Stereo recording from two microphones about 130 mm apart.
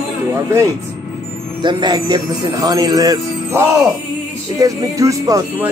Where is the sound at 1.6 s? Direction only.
35° right (ahead or behind).